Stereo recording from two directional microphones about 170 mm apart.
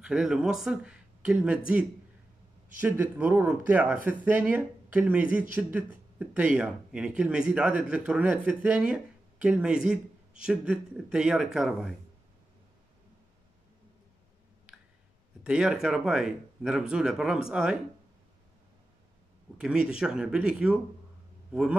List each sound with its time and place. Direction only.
0.0 s speech: 5° right (ahead or behind)
2.8 s a man's voice: 10° right (ahead or behind)
15.4 s a man's voice: 5° right (ahead or behind)
19.6 s a man's voice: 5° right (ahead or behind)